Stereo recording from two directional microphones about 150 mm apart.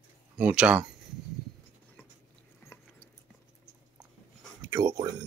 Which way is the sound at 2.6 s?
15° left (ahead or behind).